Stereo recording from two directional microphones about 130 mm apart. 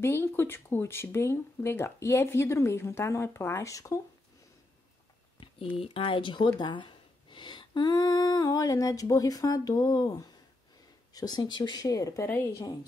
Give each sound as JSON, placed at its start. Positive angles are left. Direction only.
{"t": 0.0, "sound": "speech", "side_deg": 20}
{"t": 5.4, "sound": "speech", "side_deg": 40}
{"t": 12.3, "sound": "a woman's voice", "side_deg": 15}